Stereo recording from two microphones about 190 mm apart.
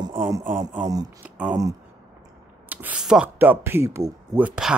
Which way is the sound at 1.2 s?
10° right (ahead or behind).